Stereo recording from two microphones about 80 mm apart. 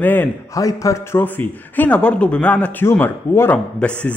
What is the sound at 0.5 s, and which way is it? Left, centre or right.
Speech, left.